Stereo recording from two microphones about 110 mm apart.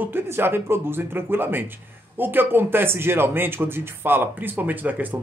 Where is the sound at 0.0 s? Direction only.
20° right (ahead or behind).